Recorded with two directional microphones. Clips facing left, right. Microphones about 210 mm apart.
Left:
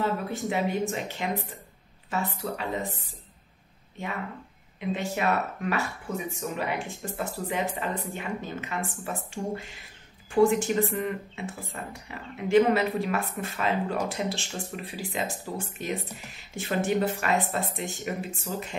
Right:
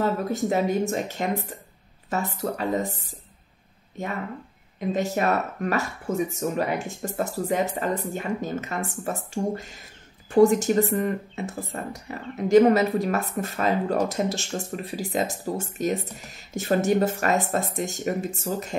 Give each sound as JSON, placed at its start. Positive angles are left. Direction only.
{"t": 0.0, "sound": "speech", "side_deg": -40}
{"t": 4.7, "sound": "speech", "side_deg": -40}